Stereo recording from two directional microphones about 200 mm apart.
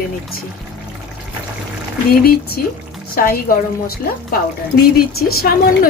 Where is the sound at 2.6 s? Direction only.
45° left (ahead or behind).